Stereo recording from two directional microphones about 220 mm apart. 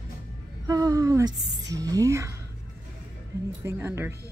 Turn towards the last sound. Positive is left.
turn(degrees=-10)  # may be behind; listen again after turning